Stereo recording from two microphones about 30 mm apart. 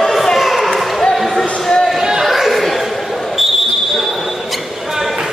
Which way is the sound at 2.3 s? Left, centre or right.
Centre.